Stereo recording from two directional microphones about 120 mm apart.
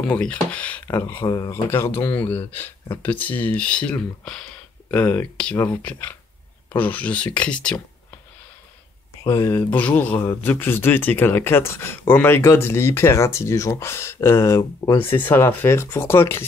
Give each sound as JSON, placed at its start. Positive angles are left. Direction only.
{"t": 0.1, "sound": "speech", "side_deg": 10}
{"t": 4.9, "sound": "speech", "side_deg": 20}
{"t": 9.2, "sound": "speech", "side_deg": 25}